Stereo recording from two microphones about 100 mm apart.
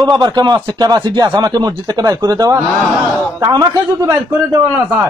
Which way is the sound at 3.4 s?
35° right (ahead or behind).